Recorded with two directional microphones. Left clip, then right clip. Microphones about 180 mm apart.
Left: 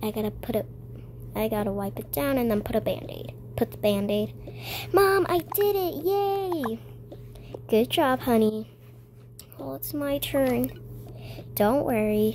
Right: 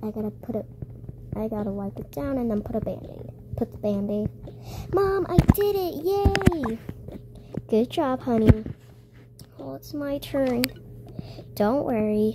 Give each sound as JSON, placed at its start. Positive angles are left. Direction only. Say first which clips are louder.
{"t": 0.0, "sound": "a woman's voice", "louder": "left 2 dB", "side_deg": -10}
{"t": 1.6, "sound": "a woman's voice", "louder": "left 3 dB", "side_deg": 0}
{"t": 2.1, "sound": "speech", "louder": "left 3 dB", "side_deg": -10}
{"t": 5.3, "sound": "a woman's voice", "louder": "right 1 dB", "side_deg": 0}
{"t": 5.7, "sound": "a child's voice", "louder": "even", "side_deg": -20}
{"t": 7.7, "sound": "speech", "louder": "left 1 dB", "side_deg": -15}
{"t": 9.6, "sound": "a sound", "louder": "left 1 dB", "side_deg": 0}
{"t": 9.9, "sound": "a woman's voice", "louder": "left 1 dB", "side_deg": -10}